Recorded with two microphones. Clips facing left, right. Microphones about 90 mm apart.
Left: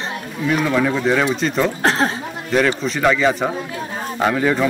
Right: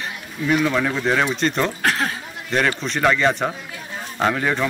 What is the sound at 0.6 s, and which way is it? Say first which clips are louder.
Speech: left 3 dB; 5° left (ahead or behind).